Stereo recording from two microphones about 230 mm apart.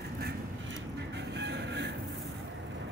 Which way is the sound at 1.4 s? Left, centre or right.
Right.